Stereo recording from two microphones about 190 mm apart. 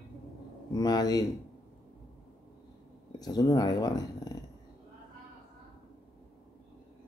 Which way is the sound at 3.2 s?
20° left (ahead or behind).